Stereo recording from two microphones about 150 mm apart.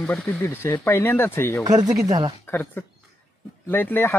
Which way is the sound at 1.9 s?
25° right (ahead or behind).